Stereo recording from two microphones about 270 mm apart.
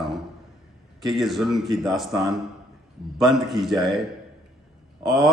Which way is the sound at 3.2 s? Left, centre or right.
Centre.